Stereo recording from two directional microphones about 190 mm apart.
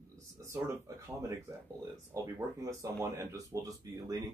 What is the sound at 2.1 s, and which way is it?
Speech, 15° right (ahead or behind).